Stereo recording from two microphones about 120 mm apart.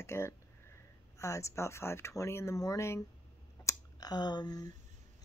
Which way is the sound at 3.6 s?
30° left (ahead or behind).